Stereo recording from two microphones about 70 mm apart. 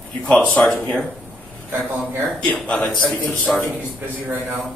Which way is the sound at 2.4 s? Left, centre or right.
Centre.